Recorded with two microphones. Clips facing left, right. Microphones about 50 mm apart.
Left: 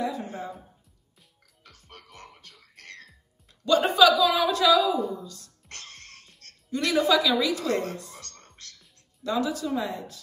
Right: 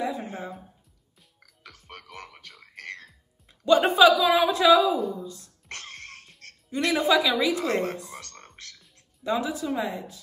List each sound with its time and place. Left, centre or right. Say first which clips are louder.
0.0 s music: even; right
1.4 s frog: right 6 dB; right
2.1 s music: right 4 dB; right
2.7 s music: right 7 dB; right
3.6 s a woman's voice: right 2 dB; right
5.7 s music: right 5 dB; right
6.7 s a woman's voice: even; right
9.2 s a woman's voice: even; centre